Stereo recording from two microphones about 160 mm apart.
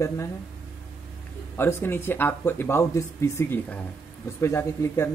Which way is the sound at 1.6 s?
15° left (ahead or behind).